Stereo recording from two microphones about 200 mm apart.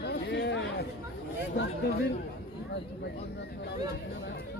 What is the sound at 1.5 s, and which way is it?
Speech, 60° left (ahead or behind).